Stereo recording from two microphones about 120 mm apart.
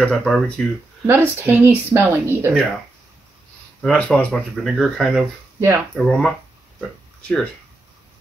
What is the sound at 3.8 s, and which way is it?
Speech, 10° left (ahead or behind).